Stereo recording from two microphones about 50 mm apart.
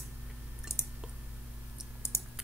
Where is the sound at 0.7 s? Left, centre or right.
Left.